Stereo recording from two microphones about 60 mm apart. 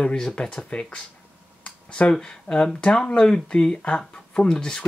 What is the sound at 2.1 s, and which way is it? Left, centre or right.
Speech, centre.